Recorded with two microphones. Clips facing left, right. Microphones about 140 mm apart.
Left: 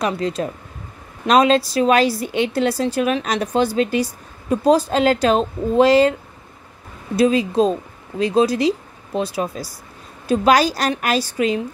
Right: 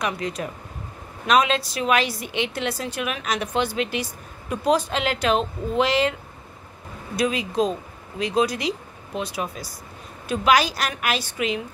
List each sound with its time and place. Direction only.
0.0 s a woman's voice: 30° left (ahead or behind)
7.2 s a woman's voice: 30° left (ahead or behind)